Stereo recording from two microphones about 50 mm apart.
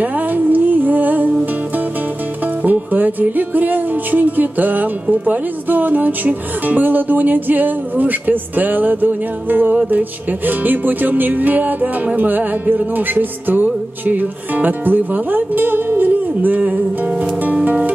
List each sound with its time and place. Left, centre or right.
0.0 s music: right